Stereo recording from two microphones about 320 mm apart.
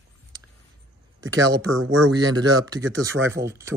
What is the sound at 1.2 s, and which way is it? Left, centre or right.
Speech, right.